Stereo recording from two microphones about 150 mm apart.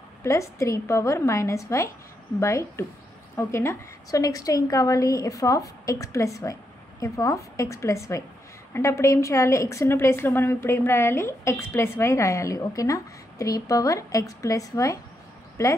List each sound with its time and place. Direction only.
0.2 s a woman's voice: 20° left (ahead or behind)